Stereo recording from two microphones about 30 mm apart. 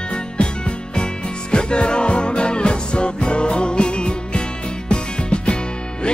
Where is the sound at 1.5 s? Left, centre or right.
Left.